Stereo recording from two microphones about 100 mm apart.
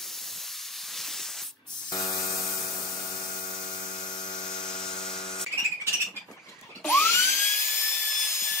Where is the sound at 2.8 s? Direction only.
40° left (ahead or behind).